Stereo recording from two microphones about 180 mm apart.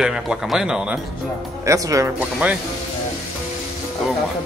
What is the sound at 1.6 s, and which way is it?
Speech, 15° right (ahead or behind).